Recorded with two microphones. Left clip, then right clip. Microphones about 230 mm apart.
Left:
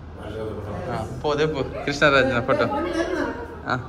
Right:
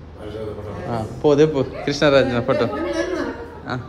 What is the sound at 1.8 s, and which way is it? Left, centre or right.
Speech, centre.